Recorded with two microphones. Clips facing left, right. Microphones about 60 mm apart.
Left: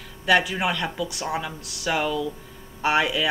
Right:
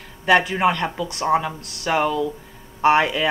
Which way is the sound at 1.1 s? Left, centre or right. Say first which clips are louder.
Right 9 dB; right.